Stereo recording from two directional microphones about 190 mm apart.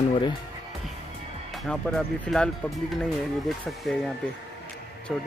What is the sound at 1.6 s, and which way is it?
Speech, 5° left (ahead or behind).